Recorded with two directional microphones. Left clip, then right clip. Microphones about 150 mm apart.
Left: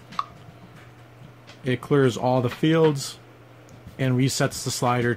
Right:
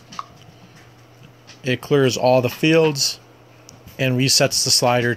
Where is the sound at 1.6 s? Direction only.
10° right (ahead or behind).